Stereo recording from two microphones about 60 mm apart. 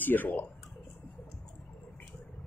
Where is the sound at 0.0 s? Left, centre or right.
Left.